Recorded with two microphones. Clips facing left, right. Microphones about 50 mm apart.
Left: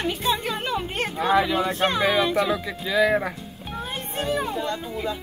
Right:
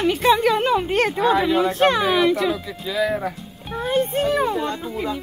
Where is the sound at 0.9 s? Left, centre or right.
Right.